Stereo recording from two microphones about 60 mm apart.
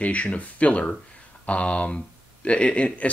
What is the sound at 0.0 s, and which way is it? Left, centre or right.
Speech, left.